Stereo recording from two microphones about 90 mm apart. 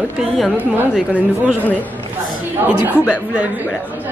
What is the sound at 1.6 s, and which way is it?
Speech, 15° left (ahead or behind).